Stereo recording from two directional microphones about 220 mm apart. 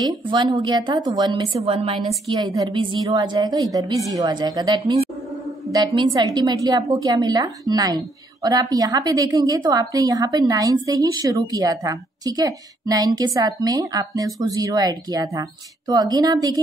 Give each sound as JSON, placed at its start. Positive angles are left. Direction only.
{"t": 0.0, "sound": "a woman's voice", "side_deg": -20}